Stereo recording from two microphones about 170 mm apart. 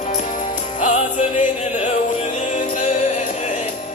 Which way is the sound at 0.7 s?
45° left (ahead or behind).